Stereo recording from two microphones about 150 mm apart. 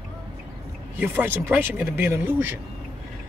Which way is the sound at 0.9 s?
15° right (ahead or behind).